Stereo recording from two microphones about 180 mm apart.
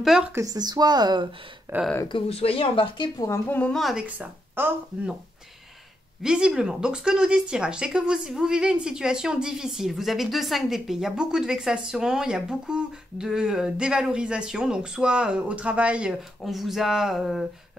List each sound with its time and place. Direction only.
0.0 s speech: centre (ahead or behind)
0.3 s speech: 20° right (ahead or behind)
2.0 s speech: 30° left (ahead or behind)
3.3 s speech: 10° left (ahead or behind); by 5.1 s 10° right (ahead or behind)
6.2 s speech: 5° right (ahead or behind)